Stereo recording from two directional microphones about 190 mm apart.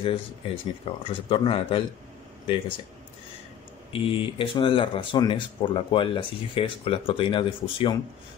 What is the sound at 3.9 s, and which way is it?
Speech, 25° left (ahead or behind).